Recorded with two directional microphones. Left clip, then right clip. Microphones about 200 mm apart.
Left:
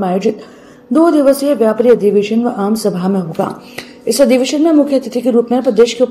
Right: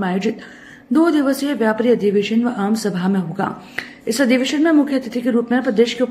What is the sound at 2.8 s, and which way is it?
Speech, 35° right (ahead or behind).